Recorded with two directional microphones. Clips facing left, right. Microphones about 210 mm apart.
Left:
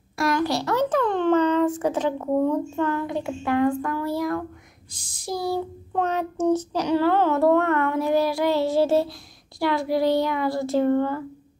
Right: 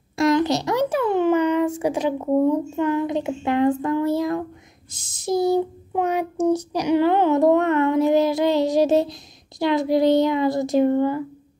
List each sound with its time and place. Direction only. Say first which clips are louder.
0.2 s a child's voice: right 4 dB; 20° right (ahead or behind)